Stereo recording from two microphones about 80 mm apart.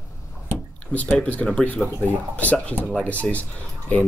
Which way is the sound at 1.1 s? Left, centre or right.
Centre.